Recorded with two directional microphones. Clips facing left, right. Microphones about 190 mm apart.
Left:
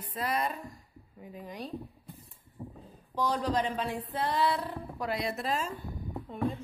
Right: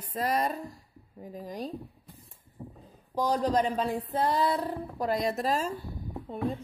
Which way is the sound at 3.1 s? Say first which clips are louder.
Right 3 dB; 40° right (ahead or behind).